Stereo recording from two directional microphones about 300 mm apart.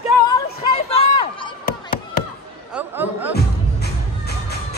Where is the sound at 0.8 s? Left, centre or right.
Centre.